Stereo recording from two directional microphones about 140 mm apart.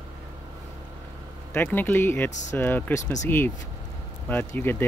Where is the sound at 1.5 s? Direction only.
15° left (ahead or behind).